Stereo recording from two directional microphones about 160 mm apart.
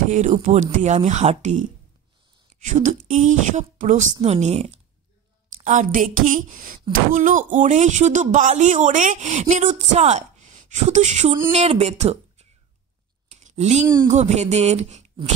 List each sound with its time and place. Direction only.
0.1 s speech: 50° right (ahead or behind)
13.3 s a sound: 45° right (ahead or behind)
14.0 s speech: 45° right (ahead or behind)